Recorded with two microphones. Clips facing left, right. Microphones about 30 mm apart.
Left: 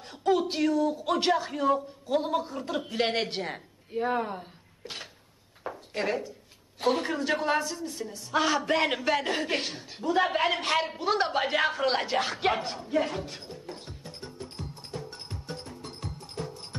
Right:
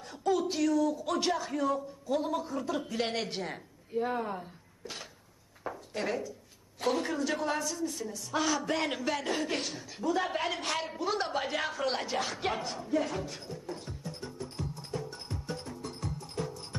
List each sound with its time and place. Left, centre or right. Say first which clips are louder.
0.0 s a man's voice: left 4 dB; left
15.0 s music: right 1 dB; left